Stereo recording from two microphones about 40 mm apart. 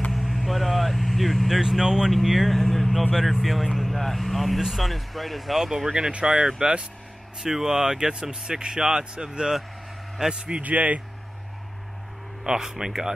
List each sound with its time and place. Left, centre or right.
0.1 s vehicle: centre
1.6 s speech: centre
2.1 s speech: centre
5.9 s speech: right
7.4 s speech: centre
10.6 s speech: right
12.4 s speech: centre